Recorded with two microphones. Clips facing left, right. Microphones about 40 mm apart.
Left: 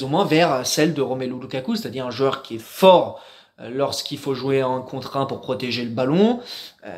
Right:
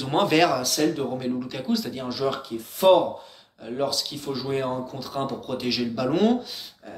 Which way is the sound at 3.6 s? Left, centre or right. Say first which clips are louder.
Left 4 dB; left.